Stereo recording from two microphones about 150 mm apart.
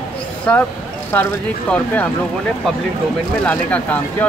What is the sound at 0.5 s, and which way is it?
Speech, 10° left (ahead or behind).